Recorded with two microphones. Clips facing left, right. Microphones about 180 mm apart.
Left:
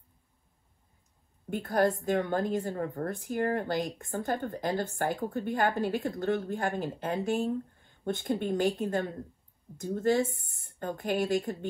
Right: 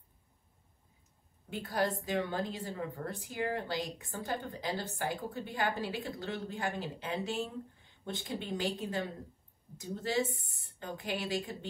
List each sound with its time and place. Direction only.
1.5 s a woman's voice: 55° left (ahead or behind)